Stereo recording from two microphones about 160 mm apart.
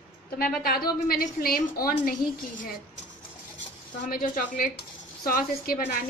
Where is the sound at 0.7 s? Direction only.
70° left (ahead or behind).